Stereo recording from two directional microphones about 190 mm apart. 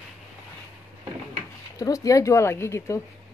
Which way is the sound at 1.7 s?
20° left (ahead or behind).